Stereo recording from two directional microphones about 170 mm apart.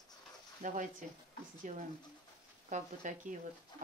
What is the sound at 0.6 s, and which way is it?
Speech, 50° right (ahead or behind).